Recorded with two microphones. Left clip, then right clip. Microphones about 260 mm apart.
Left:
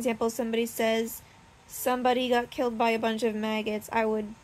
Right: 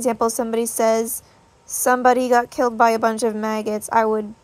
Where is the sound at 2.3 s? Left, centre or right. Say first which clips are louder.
Right 9 dB; centre.